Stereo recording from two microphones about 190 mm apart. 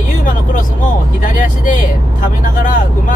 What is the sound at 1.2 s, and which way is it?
Vehicle, 45° left (ahead or behind).